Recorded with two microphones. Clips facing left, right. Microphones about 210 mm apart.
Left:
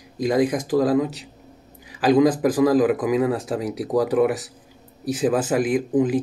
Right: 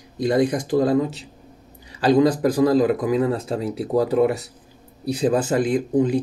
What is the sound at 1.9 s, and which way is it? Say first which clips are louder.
A man's voice: even; 90° left.